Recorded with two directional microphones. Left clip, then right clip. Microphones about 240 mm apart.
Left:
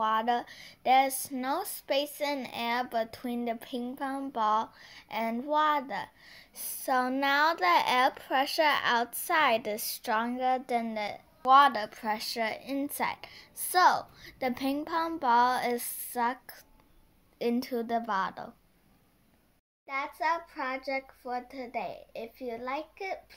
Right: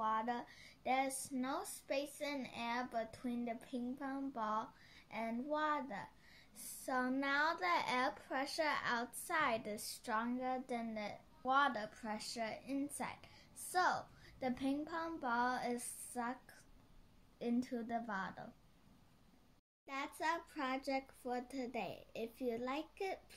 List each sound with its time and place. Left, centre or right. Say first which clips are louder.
0.0 s speech: left 11 dB; left
19.9 s a child's voice: left 10 dB; right